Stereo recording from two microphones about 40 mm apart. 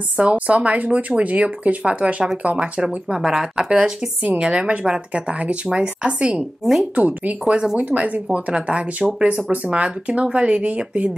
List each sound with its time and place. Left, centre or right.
0.2 s speech: right
3.3 s speech: centre
4.4 s a woman's voice: right
6.6 s speech: centre
7.0 s speech: right